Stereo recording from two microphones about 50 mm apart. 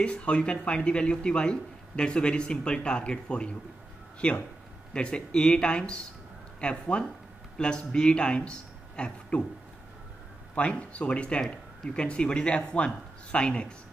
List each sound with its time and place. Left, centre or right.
0.0 s speech: left
10.5 s speech: left